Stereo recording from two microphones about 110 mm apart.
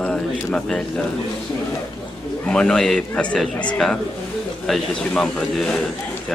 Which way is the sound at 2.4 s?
10° left (ahead or behind).